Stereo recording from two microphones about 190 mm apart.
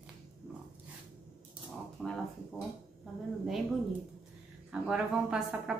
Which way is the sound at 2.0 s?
Centre (ahead or behind).